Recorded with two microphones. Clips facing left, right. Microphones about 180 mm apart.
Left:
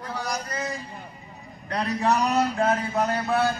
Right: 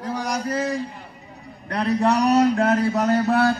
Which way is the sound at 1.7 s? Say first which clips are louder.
Right 4 dB; 60° right (ahead or behind).